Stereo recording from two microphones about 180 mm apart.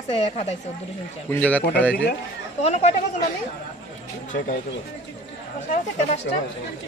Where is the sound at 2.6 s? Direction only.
35° left (ahead or behind).